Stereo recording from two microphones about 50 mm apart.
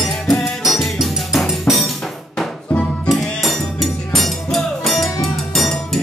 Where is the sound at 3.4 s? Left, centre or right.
Centre.